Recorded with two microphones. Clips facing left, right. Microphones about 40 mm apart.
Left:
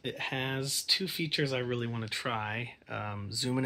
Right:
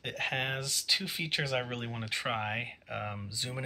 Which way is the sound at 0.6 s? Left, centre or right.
Right.